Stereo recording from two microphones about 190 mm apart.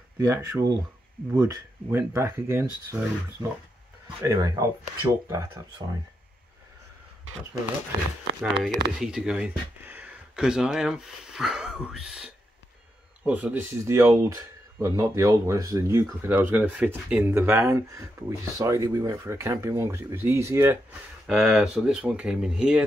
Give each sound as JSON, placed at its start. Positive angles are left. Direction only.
{"t": 0.3, "sound": "speech", "side_deg": -15}
{"t": 4.2, "sound": "speech", "side_deg": -20}
{"t": 8.4, "sound": "speech", "side_deg": -5}